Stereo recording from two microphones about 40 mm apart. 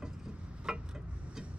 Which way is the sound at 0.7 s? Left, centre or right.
Centre.